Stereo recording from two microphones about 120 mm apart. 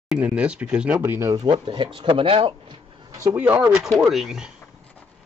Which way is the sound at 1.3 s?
35° right (ahead or behind).